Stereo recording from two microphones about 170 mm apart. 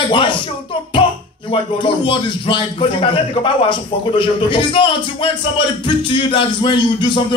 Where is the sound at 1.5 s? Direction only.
30° left (ahead or behind).